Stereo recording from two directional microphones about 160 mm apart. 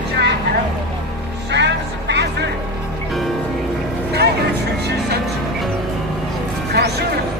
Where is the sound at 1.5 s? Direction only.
90° right.